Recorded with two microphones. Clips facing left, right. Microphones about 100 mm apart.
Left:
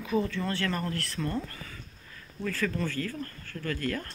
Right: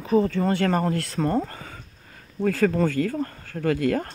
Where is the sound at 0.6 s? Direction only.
80° right.